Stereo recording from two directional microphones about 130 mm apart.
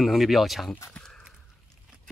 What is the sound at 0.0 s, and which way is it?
Speech, centre (ahead or behind).